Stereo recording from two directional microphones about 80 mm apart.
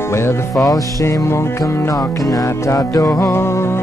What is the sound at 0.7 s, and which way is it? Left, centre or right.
Music, left.